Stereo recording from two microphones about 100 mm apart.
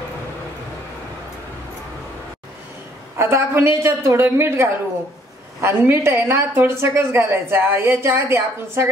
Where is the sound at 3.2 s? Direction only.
25° right (ahead or behind).